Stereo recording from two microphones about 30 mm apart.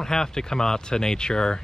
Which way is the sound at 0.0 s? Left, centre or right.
Left.